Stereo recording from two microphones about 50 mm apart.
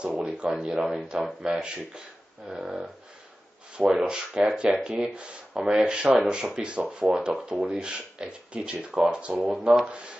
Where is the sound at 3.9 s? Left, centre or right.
Centre.